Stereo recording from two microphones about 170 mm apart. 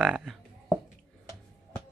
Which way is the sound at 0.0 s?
Centre (ahead or behind).